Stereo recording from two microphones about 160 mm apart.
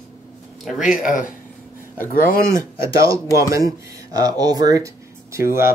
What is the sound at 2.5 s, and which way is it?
Speech, 20° right (ahead or behind).